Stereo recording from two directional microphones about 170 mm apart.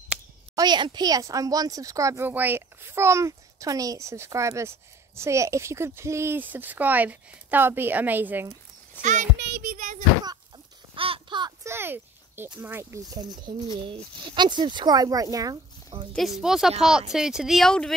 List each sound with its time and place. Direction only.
0.6 s speech: 25° right (ahead or behind)
9.0 s a child's voice: 45° right (ahead or behind)
9.6 s a sound: 50° right (ahead or behind)
11.0 s a sound: 30° right (ahead or behind)
11.6 s speech: 15° right (ahead or behind)
16.1 s speech: centre (ahead or behind)